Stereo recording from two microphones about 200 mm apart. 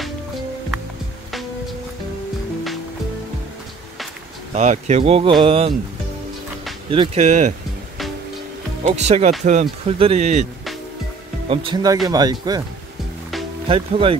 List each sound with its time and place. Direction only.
4.6 s speech: 35° right (ahead or behind)
6.9 s speech: 30° right (ahead or behind)
8.8 s speech: 35° right (ahead or behind)
11.4 s speech: 25° right (ahead or behind)
13.7 s speech: 25° right (ahead or behind)